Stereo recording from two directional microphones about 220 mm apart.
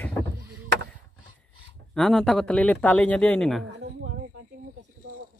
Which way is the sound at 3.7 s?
55° right (ahead or behind).